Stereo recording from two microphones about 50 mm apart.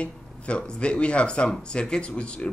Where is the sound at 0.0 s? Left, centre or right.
Left.